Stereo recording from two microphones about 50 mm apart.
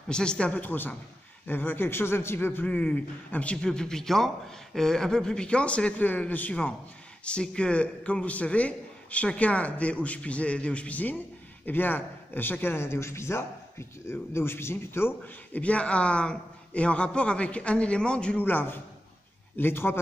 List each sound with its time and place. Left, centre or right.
0.1 s a man's voice: centre
0.6 s a man's voice: left
2.6 s a man's voice: left
3.6 s speech: centre; by 6.5 s left
7.2 s a man's voice: left
12.7 s speech: left
15.2 s a man's voice: left
18.4 s a man's voice: left